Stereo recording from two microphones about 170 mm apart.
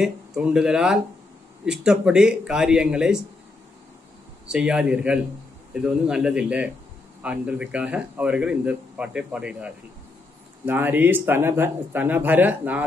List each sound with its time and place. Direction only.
0.0 s speech: 5° right (ahead or behind)
4.5 s speech: 5° right (ahead or behind)